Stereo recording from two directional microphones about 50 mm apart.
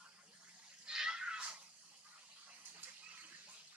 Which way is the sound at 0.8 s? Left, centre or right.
Centre.